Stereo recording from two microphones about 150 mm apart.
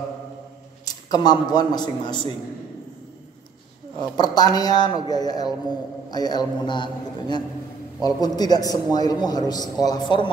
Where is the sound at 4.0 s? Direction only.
25° left (ahead or behind).